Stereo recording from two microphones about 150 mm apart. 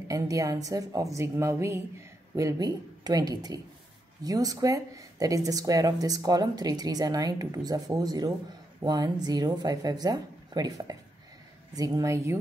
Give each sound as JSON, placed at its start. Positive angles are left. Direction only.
{"t": 0.1, "sound": "speech", "side_deg": -25}